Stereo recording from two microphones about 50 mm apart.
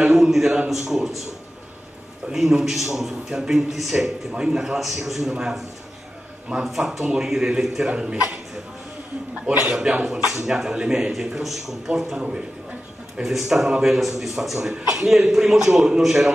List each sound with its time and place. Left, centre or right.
0.0 s a sound: centre
0.7 s a man's voice: centre
2.3 s a man's voice: centre
6.5 s a man's voice: centre
9.7 s a man's voice: centre